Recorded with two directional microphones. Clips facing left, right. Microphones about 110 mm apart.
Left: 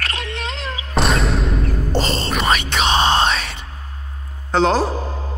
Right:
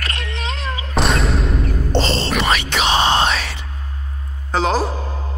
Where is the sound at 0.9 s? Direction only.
Centre (ahead or behind).